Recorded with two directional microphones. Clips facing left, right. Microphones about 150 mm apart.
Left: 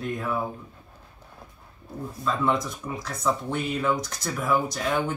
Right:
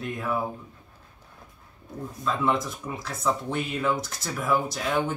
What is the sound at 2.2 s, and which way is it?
Speech, centre (ahead or behind).